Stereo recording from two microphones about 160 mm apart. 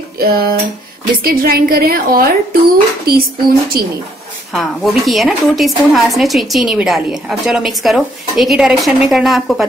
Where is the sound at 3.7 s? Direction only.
70° right (ahead or behind).